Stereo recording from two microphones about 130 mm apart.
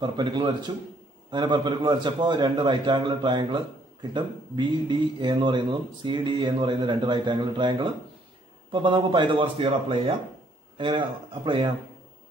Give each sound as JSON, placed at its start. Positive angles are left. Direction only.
{"t": 0.0, "sound": "a man's voice", "side_deg": -35}